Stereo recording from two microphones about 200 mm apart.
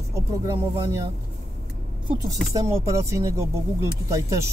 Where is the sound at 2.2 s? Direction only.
15° right (ahead or behind).